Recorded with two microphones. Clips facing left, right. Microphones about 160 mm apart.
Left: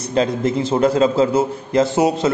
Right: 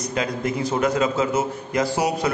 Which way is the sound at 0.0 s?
30° left (ahead or behind).